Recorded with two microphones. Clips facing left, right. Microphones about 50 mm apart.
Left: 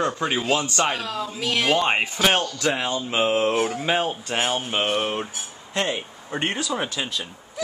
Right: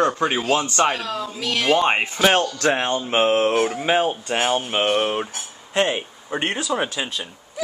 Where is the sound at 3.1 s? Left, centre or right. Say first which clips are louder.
Right 3 dB; right.